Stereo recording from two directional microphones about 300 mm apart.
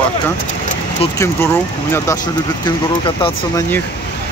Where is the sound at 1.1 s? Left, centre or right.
Centre.